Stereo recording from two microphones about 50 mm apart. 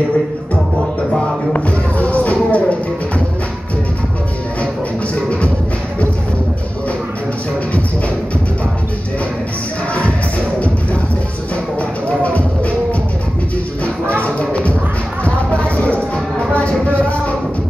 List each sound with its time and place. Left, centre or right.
1.5 s music: left
12.2 s music: left
13.8 s music: left